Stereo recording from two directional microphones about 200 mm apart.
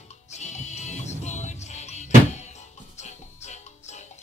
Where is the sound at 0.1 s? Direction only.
35° left (ahead or behind).